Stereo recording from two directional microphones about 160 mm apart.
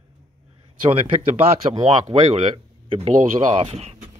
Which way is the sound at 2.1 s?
40° right (ahead or behind).